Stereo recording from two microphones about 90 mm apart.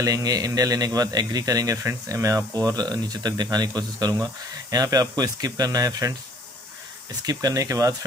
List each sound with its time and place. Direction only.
0.0 s a man's voice: 45° right (ahead or behind)
7.2 s speech: 40° right (ahead or behind)